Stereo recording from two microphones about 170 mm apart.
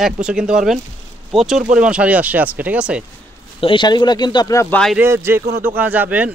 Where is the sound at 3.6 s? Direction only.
25° left (ahead or behind).